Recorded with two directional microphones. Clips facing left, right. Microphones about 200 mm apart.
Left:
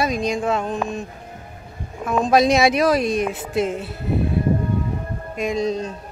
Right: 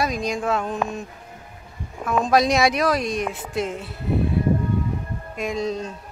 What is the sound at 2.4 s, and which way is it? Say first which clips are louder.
Speech: left 3 dB; centre (ahead or behind).